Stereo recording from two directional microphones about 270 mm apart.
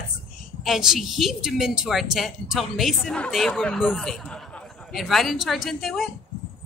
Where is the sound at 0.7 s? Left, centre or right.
Centre.